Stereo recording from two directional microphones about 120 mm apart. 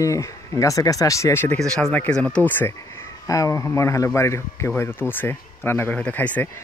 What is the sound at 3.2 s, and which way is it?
Speech, 25° left (ahead or behind).